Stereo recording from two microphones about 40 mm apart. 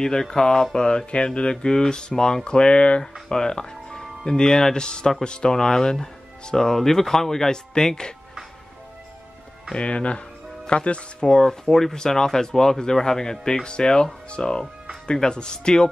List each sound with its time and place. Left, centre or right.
0.0 s speech: centre
1.5 s speech: centre
3.0 s speech: centre
9.8 s speech: left